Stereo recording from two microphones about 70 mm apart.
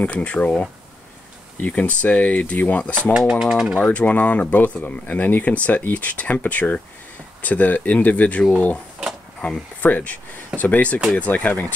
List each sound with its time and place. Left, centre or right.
0.0 s speech: left
3.1 s speech: centre
3.8 s speech: left
9.8 s speech: left